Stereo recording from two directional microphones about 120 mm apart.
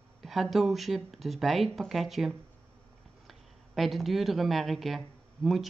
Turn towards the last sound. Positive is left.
turn(degrees=0)  # may be behind; listen again after turning